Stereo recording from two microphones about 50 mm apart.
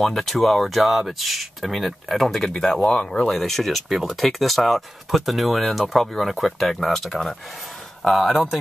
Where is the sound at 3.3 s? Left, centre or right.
Centre.